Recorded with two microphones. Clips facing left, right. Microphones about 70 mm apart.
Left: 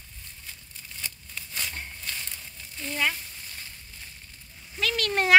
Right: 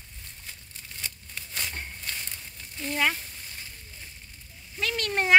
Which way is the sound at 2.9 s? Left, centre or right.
Right.